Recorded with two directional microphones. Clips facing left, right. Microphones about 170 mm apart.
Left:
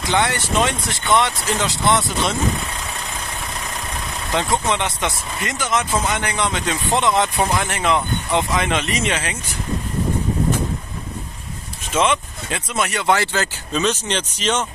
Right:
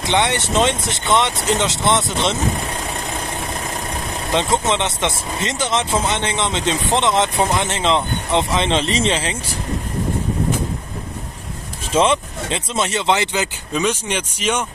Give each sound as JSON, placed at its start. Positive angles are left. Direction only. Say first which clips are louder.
{"t": 0.0, "sound": "speech", "louder": "right 1 dB", "side_deg": -20}
{"t": 4.3, "sound": "speech", "louder": "right 2 dB", "side_deg": -20}
{"t": 11.9, "sound": "speech", "louder": "right 3 dB", "side_deg": -30}